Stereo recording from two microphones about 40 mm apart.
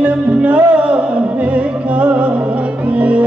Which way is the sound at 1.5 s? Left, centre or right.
Right.